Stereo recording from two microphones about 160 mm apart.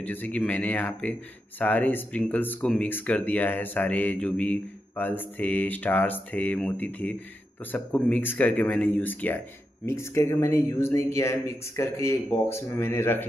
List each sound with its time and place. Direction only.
0.0 s speech: 10° left (ahead or behind)